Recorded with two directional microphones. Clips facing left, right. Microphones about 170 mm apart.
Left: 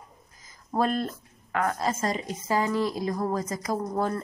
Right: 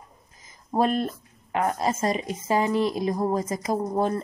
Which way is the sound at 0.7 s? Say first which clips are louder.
Right 3 dB; 20° right (ahead or behind).